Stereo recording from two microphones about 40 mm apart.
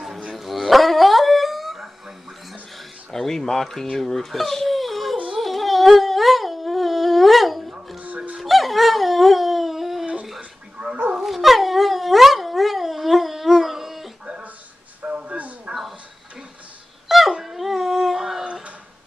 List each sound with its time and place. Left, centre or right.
0.4 s dog: centre
3.1 s speech: centre
5.4 s a sound: centre
8.4 s dog: centre
15.0 s a sound: right
17.3 s dog: centre